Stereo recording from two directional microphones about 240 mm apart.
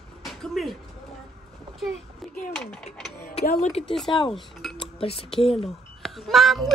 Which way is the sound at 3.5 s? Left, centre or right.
Left.